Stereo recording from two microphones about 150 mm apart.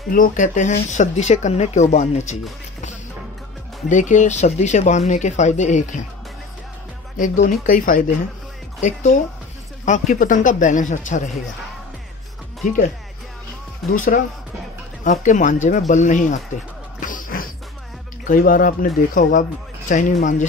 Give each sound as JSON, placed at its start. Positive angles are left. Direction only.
{"t": 0.1, "sound": "speech", "side_deg": 60}
{"t": 3.9, "sound": "speech", "side_deg": 55}
{"t": 7.2, "sound": "speech", "side_deg": 60}
{"t": 13.9, "sound": "speech", "side_deg": 65}
{"t": 17.0, "sound": "basketball bounce", "side_deg": 65}
{"t": 18.2, "sound": "speech", "side_deg": 65}